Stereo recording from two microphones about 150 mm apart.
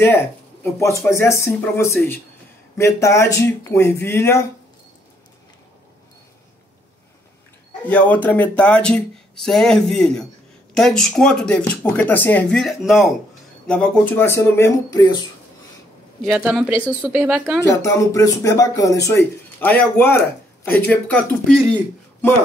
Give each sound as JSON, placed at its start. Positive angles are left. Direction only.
{"t": 0.7, "sound": "speech", "side_deg": 20}
{"t": 7.9, "sound": "speech", "side_deg": 10}
{"t": 16.3, "sound": "speech", "side_deg": -10}
{"t": 17.6, "sound": "speech", "side_deg": 20}